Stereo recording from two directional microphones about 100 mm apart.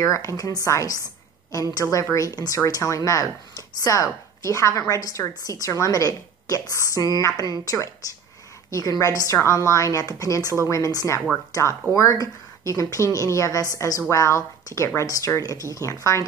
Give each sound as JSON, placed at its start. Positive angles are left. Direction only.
{"t": 0.0, "sound": "speech", "side_deg": 30}
{"t": 6.7, "sound": "a woman's voice", "side_deg": -30}
{"t": 7.0, "sound": "speech", "side_deg": 35}